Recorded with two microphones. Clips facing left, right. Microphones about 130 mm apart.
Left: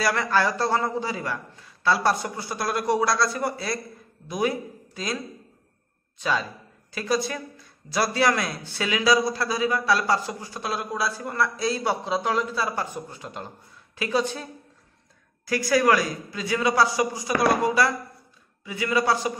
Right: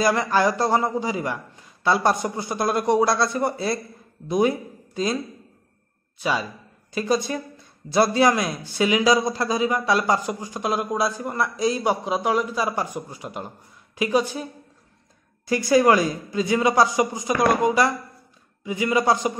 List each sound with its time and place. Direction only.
0.0 s a man's voice: 20° right (ahead or behind)
6.1 s a man's voice: 10° right (ahead or behind)